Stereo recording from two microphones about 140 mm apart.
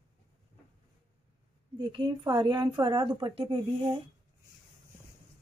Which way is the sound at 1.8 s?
35° right (ahead or behind).